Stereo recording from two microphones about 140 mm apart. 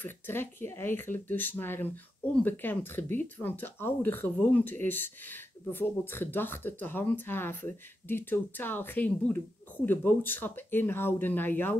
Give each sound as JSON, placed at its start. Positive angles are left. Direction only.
{"t": 0.0, "sound": "speech", "side_deg": 15}